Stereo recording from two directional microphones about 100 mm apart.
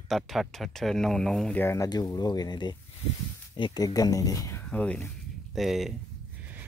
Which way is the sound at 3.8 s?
40° left (ahead or behind).